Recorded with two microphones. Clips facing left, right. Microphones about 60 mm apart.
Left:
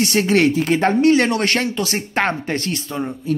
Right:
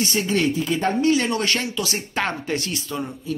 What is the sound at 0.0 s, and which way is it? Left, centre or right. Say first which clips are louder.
Speech: left 6 dB; left.